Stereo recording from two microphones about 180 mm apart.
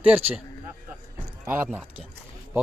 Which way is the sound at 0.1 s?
10° right (ahead or behind).